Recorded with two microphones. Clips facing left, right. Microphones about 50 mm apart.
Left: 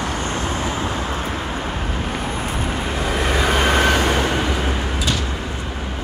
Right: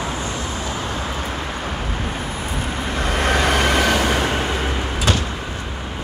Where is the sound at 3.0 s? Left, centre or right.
Right.